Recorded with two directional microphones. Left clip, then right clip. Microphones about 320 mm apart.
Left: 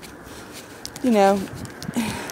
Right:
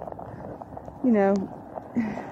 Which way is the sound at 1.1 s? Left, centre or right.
Centre.